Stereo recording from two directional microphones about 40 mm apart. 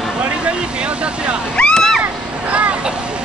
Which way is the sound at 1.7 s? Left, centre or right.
Centre.